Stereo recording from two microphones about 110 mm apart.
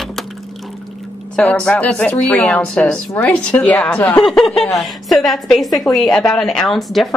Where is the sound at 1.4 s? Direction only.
10° left (ahead or behind).